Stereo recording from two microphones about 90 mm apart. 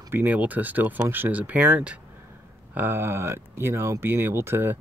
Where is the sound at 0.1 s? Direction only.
20° right (ahead or behind).